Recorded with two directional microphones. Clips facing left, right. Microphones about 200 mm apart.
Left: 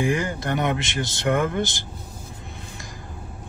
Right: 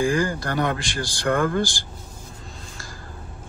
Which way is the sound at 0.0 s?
20° left (ahead or behind).